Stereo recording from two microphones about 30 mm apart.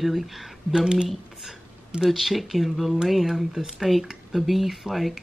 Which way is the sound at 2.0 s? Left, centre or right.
Centre.